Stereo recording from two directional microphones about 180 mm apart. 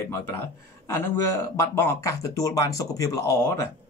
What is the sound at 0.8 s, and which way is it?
Speech, 15° left (ahead or behind).